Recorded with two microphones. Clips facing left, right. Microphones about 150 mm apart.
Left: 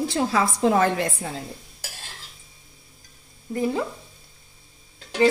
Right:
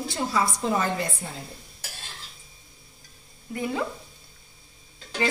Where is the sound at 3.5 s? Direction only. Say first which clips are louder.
Left 4 dB; 35° left (ahead or behind).